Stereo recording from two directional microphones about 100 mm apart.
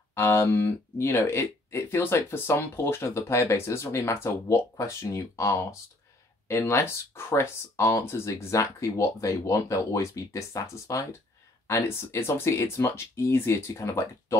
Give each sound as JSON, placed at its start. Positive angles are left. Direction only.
{"t": 0.1, "sound": "speech", "side_deg": 25}